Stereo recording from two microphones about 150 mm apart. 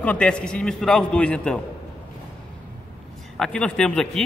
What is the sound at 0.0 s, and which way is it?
A man's voice, 10° left (ahead or behind).